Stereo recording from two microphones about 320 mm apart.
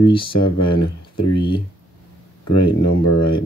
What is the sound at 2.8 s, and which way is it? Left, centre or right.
Speech, left.